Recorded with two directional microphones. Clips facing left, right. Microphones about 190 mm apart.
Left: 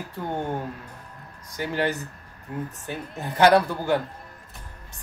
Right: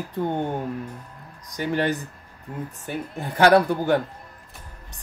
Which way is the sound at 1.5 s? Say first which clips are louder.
Right 4 dB; 15° right (ahead or behind).